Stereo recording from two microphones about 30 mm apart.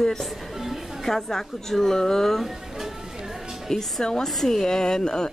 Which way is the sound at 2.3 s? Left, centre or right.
Centre.